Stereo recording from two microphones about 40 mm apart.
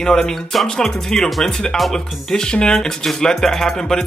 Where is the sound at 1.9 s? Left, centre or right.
Centre.